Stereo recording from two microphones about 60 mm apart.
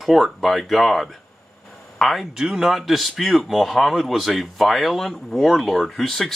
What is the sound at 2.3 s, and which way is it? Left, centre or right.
Speech, centre.